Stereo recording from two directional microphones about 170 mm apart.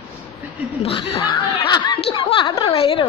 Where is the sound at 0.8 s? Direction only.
30° left (ahead or behind).